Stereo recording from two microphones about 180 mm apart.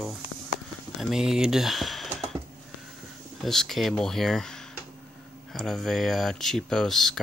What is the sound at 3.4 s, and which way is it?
Speech, centre (ahead or behind).